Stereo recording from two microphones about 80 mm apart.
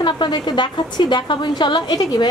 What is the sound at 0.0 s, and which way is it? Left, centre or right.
A woman's voice, left.